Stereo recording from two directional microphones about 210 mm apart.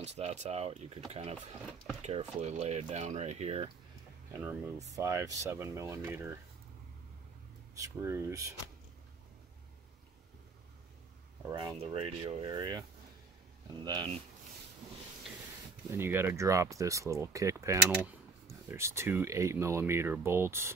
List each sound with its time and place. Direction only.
0.0 s speech: 30° right (ahead or behind)
4.3 s speech: 10° right (ahead or behind)
7.7 s speech: 15° right (ahead or behind)
11.5 s speech: 25° right (ahead or behind)
13.8 s speech: 20° right (ahead or behind)
15.9 s speech: 10° right (ahead or behind)